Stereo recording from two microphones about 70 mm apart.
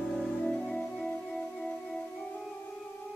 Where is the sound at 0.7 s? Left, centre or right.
Left.